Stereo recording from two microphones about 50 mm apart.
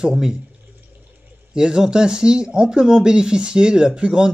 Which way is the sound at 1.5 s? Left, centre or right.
Centre.